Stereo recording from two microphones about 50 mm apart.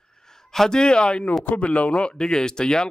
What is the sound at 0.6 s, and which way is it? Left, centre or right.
Speech, centre.